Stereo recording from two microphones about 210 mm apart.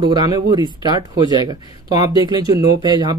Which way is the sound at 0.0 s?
20° right (ahead or behind).